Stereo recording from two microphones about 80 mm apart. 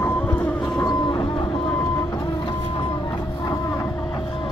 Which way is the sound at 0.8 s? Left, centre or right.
Left.